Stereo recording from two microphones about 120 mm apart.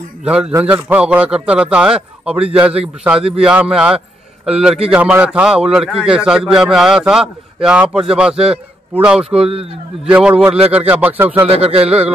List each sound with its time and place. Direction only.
0.2 s a man's voice: 10° right (ahead or behind)
11.4 s speech: 55° right (ahead or behind)